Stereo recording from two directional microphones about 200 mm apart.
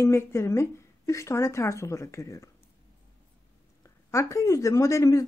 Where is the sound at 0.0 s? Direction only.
15° left (ahead or behind).